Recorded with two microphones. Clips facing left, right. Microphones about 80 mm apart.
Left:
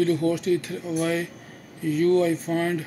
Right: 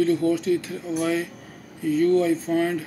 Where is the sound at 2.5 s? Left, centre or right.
Left.